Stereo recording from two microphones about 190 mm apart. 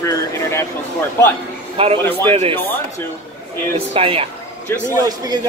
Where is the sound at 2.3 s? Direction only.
30° right (ahead or behind).